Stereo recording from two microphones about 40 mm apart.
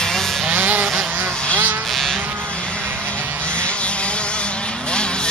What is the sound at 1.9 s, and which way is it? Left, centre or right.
Vehicle, centre.